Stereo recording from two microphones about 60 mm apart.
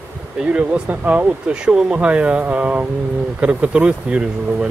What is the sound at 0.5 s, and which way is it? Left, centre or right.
Speech, centre.